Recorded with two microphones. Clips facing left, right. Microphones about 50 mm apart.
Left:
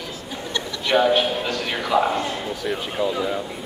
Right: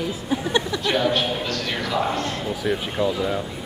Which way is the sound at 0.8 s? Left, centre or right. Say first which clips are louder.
Left 8 dB; centre.